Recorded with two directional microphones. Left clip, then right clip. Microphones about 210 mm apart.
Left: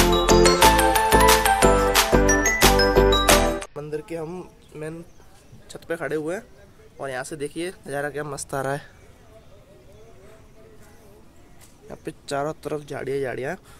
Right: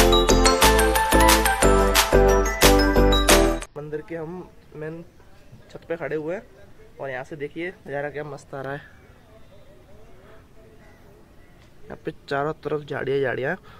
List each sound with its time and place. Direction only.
0.0 s music: centre (ahead or behind)
5.7 s speech: 15° left (ahead or behind)
8.3 s speech: 45° left (ahead or behind)
8.6 s speech: 30° left (ahead or behind)
11.9 s speech: 5° right (ahead or behind)